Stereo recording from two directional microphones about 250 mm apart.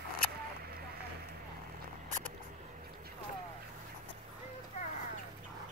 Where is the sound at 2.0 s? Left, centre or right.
Right.